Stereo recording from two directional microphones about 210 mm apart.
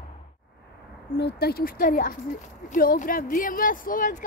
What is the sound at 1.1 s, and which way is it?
Speech, 50° left (ahead or behind).